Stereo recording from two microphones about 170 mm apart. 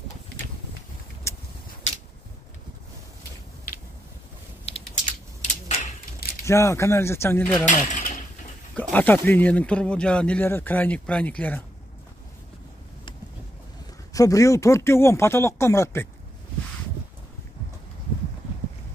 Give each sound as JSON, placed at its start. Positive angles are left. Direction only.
{"t": 1.3, "sound": "vehicle", "side_deg": 15}
{"t": 4.6, "sound": "a sound", "side_deg": 40}
{"t": 6.4, "sound": "speech", "side_deg": 15}
{"t": 7.6, "sound": "mechanisms", "side_deg": 50}
{"t": 8.9, "sound": "speech", "side_deg": 10}
{"t": 14.1, "sound": "speech", "side_deg": 20}